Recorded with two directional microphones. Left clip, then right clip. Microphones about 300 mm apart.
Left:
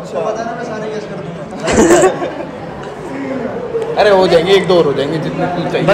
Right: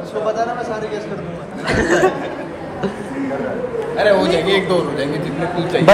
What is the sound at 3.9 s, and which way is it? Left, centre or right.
A man's voice, left.